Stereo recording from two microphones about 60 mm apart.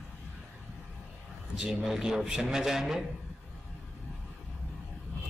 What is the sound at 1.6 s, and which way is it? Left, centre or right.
A man's voice, centre.